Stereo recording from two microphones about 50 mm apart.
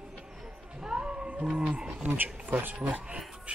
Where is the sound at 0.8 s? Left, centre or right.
Centre.